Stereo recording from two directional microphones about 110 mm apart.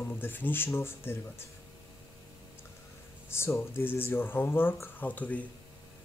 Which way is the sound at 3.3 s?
25° left (ahead or behind).